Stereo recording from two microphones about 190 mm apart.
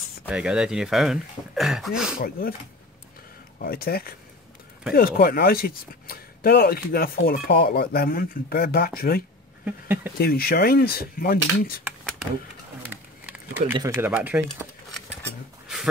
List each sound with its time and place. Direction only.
0.3 s speech: 5° right (ahead or behind)
3.6 s speech: 50° left (ahead or behind)
9.7 s speech: 10° right (ahead or behind)
10.1 s speech: 55° left (ahead or behind)
12.9 s a sound: 10° right (ahead or behind)
13.7 s speech: 15° right (ahead or behind)